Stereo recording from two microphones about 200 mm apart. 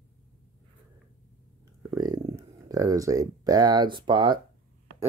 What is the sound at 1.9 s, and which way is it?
Speech, 15° right (ahead or behind).